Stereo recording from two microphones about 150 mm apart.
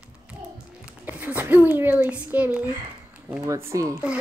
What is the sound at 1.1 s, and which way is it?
A child's voice, 10° right (ahead or behind).